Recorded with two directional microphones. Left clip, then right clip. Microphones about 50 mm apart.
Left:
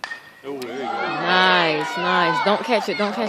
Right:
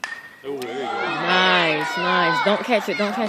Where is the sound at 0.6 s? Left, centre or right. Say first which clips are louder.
Even; centre.